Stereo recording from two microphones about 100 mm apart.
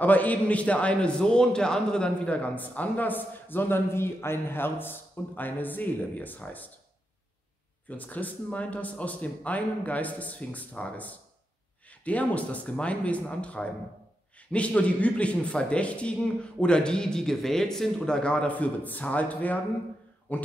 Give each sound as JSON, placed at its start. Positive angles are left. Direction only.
{"t": 0.0, "sound": "a man's voice", "side_deg": 15}
{"t": 7.9, "sound": "a man's voice", "side_deg": 15}